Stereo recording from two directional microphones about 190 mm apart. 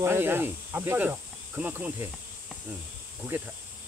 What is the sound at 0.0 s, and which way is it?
Speech, 10° right (ahead or behind).